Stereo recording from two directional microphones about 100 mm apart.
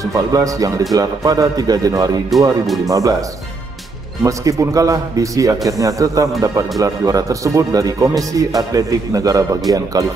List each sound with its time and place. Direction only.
0.0 s speech: 35° right (ahead or behind)
2.6 s speech: centre (ahead or behind)
2.9 s speech: 35° right (ahead or behind)